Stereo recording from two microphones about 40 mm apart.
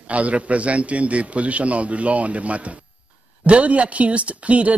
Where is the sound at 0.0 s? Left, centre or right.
Right.